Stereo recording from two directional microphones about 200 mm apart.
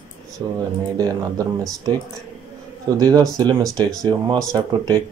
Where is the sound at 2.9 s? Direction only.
20° right (ahead or behind).